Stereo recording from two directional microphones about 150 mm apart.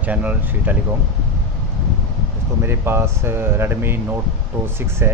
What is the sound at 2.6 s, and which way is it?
Speech, 15° right (ahead or behind).